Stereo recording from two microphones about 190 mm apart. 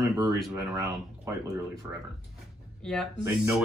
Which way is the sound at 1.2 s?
15° right (ahead or behind).